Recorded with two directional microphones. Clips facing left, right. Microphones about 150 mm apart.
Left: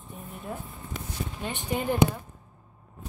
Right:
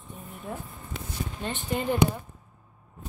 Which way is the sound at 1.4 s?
10° left (ahead or behind).